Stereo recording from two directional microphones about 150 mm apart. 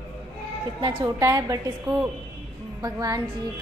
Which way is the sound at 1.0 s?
20° right (ahead or behind).